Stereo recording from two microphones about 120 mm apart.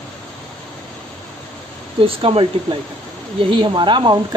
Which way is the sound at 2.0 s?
50° right (ahead or behind).